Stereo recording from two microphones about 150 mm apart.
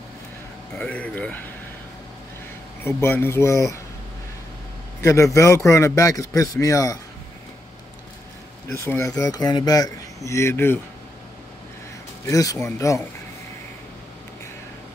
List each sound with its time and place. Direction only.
0.7 s speech: 10° left (ahead or behind)
2.8 s speech: 15° left (ahead or behind)
5.0 s speech: 20° left (ahead or behind)
8.7 s speech: 20° left (ahead or behind)
12.3 s speech: 20° left (ahead or behind)